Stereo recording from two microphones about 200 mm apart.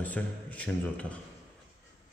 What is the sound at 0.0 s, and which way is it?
A man's voice, 5° left (ahead or behind).